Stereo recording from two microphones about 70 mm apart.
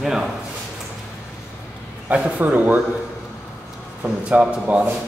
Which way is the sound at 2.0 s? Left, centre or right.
Centre.